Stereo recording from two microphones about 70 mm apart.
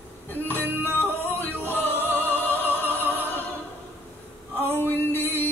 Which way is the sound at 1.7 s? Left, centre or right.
Left.